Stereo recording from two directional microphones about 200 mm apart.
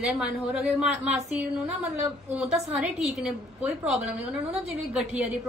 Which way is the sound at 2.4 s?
5° right (ahead or behind).